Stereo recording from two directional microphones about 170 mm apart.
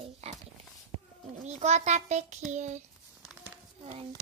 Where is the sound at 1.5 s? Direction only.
40° right (ahead or behind).